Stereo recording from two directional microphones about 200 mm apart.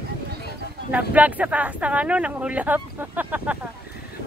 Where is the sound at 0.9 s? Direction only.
5° right (ahead or behind).